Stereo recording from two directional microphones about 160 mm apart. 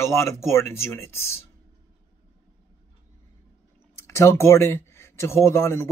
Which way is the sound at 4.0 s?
15° left (ahead or behind).